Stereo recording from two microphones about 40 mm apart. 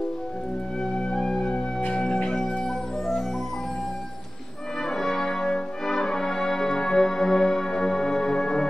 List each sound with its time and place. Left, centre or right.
1.1 s music: centre
1.5 s music: left
2.3 s music: centre
4.8 s brass instrument: centre